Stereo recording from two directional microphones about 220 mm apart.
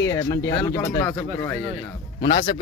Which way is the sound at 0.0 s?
15° left (ahead or behind).